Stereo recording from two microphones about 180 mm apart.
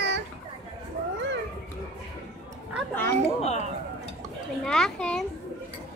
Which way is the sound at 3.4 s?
40° left (ahead or behind).